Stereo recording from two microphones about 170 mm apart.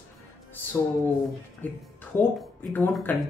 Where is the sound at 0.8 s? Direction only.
10° left (ahead or behind).